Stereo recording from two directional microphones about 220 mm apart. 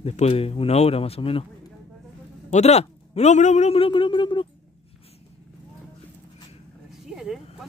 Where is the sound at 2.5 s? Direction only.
30° left (ahead or behind).